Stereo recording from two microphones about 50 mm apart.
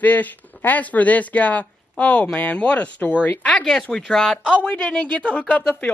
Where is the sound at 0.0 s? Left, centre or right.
Left.